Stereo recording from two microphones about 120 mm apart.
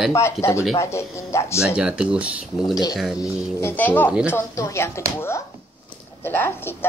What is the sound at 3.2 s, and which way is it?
Speech, 20° left (ahead or behind).